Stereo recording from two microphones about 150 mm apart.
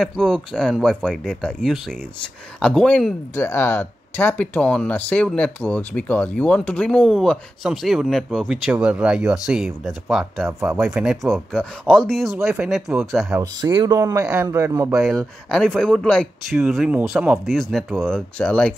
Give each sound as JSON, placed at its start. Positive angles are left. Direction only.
{"t": 0.0, "sound": "speech", "side_deg": 5}
{"t": 13.4, "sound": "a man's voice", "side_deg": -25}
{"t": 14.9, "sound": "speech", "side_deg": -5}
{"t": 16.5, "sound": "speech", "side_deg": -5}